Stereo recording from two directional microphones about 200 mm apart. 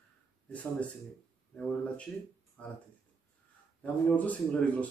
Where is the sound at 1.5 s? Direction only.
5° left (ahead or behind).